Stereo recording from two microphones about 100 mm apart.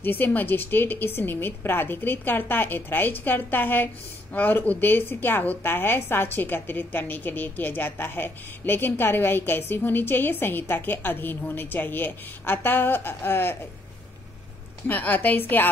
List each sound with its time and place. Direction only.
0.0 s a woman's voice: 20° left (ahead or behind)
14.9 s a woman's voice: 20° left (ahead or behind)